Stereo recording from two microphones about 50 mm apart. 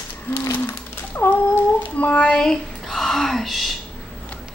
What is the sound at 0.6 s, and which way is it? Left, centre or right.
Speech, left.